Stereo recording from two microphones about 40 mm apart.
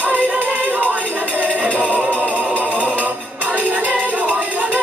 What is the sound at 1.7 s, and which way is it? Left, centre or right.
Music, right.